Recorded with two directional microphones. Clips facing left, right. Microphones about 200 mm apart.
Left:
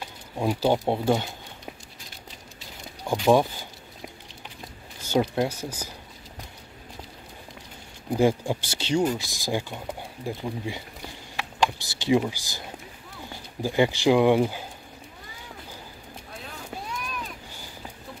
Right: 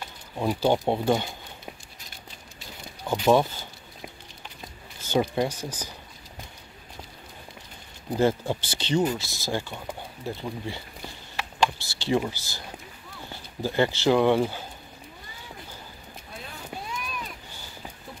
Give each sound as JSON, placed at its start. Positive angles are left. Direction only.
{"t": 0.4, "sound": "speech", "side_deg": 10}
{"t": 3.1, "sound": "speech", "side_deg": 10}
{"t": 5.1, "sound": "speech", "side_deg": 5}
{"t": 8.2, "sound": "speech", "side_deg": 10}
{"t": 11.3, "sound": "a sound", "side_deg": 15}
{"t": 12.3, "sound": "speech", "side_deg": 15}